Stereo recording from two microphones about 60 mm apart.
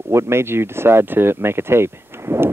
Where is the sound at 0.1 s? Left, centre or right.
Right.